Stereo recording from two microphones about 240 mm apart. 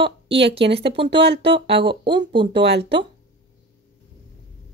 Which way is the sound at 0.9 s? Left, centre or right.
Right.